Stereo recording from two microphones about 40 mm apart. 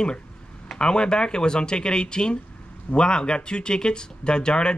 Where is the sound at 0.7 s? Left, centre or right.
Left.